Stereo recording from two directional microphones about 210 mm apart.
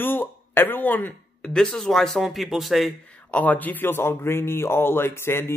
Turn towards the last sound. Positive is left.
turn(degrees=10)  # may be behind; listen again after turning